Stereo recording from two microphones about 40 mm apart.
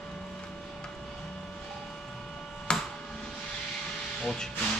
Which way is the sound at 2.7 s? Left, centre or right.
Centre.